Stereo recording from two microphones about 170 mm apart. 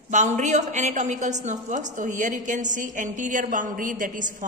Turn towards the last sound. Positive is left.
turn(degrees=-50)  # may be behind; listen again after turning